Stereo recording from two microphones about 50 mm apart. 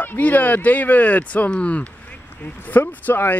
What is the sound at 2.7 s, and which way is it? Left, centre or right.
Speech, left.